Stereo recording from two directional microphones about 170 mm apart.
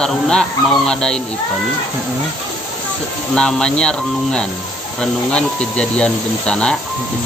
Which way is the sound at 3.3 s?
5° left (ahead or behind).